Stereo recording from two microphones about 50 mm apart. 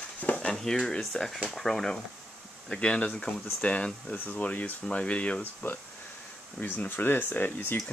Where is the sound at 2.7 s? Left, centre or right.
Left.